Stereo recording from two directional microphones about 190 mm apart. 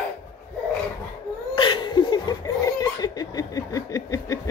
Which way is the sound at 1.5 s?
25° left (ahead or behind).